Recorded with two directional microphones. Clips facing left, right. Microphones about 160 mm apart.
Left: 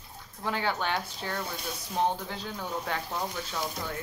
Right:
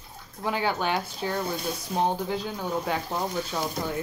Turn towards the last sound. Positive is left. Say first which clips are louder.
# right 5 dB
turn(degrees=-15)  # may be behind; listen again after turning